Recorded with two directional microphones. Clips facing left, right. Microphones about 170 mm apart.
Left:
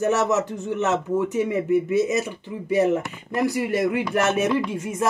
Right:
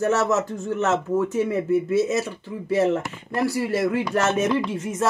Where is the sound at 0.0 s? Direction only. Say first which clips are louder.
Even; 15° left (ahead or behind).